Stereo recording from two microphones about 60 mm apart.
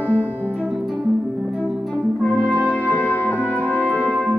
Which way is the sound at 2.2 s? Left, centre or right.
Centre.